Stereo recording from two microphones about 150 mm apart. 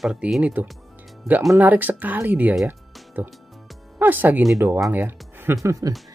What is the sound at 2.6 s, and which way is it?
Music, 10° right (ahead or behind).